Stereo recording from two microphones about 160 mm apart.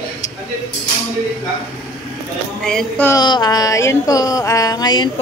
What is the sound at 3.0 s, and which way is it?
A man's voice, 25° left (ahead or behind).